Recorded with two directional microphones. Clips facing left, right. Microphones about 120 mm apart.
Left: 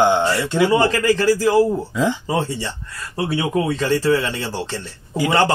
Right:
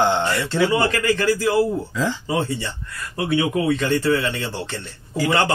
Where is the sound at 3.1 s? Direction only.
35° left (ahead or behind).